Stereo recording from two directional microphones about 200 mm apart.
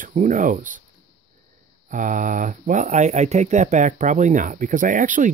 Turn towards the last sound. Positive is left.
turn(degrees=-40)  # may be behind; listen again after turning